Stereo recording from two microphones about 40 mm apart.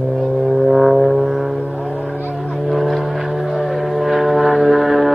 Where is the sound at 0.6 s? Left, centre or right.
Centre.